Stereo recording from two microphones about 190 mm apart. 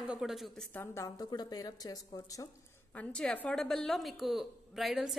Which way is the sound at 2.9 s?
5° left (ahead or behind).